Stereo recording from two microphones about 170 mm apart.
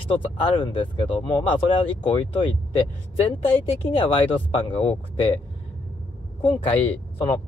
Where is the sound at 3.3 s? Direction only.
35° left (ahead or behind).